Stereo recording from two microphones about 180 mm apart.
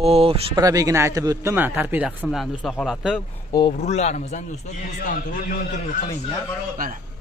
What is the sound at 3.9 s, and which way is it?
A man's voice, 40° left (ahead or behind).